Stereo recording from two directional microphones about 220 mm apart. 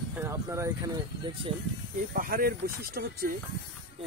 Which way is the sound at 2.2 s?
40° right (ahead or behind).